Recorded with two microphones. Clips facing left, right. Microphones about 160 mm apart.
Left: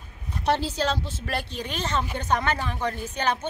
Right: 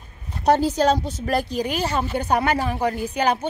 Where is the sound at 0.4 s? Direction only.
40° right (ahead or behind).